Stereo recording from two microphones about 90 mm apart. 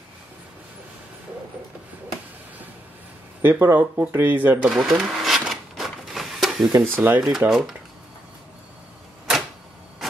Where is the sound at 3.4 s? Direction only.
25° right (ahead or behind).